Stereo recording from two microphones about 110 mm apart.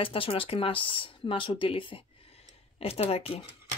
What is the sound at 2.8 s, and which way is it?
Speech, 65° left (ahead or behind).